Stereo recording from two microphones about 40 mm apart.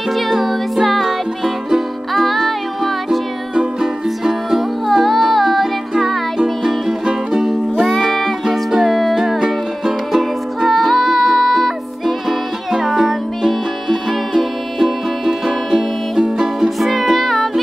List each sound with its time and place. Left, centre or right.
0.1 s music: centre
8.0 s music: centre
8.5 s music: centre
10.7 s music: centre